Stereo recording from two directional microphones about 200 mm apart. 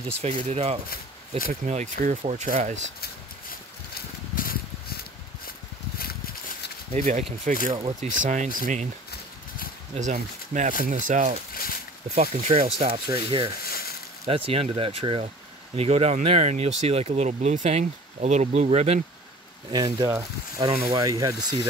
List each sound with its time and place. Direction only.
0.2 s speech: 30° right (ahead or behind)
3.0 s horse: 50° left (ahead or behind)
6.9 s speech: 40° right (ahead or behind)
8.3 s speech: 40° right (ahead or behind)
9.9 s speech: 40° right (ahead or behind)
11.5 s a sound: 45° left (ahead or behind)
12.2 s speech: 30° right (ahead or behind)
13.7 s a sound: 50° left (ahead or behind)
14.2 s speech: 30° right (ahead or behind)
19.7 s speech: 20° right (ahead or behind)